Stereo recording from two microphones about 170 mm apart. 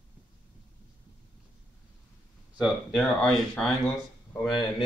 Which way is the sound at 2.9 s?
5° left (ahead or behind).